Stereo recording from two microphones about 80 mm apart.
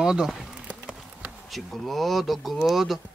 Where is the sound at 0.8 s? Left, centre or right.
Centre.